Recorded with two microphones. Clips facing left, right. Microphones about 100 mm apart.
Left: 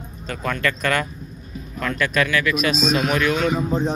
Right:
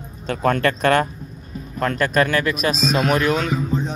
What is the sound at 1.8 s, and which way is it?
Speech, 40° right (ahead or behind).